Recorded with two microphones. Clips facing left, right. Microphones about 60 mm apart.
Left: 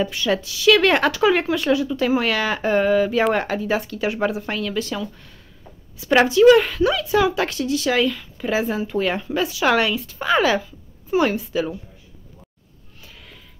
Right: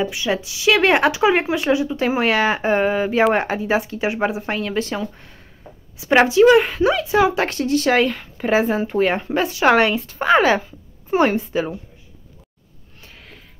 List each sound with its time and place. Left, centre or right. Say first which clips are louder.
0.0 s a woman's voice: even; centre
13.0 s sniff: right 1 dB; right